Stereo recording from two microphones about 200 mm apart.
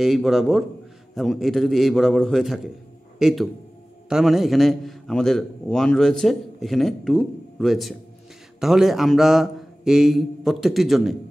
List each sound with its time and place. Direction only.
0.0 s a man's voice: centre (ahead or behind)